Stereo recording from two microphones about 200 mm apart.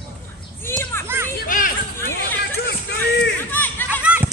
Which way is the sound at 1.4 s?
45° left (ahead or behind).